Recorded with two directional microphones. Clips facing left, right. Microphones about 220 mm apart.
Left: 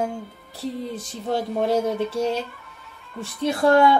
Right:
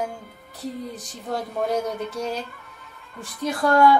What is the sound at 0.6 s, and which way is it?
A woman's voice, 30° left (ahead or behind).